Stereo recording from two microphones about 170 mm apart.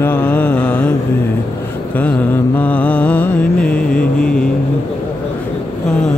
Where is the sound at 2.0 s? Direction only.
10° left (ahead or behind).